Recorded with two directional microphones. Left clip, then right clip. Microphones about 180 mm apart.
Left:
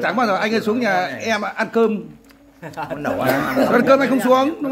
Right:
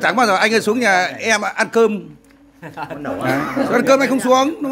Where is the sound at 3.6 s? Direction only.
15° right (ahead or behind).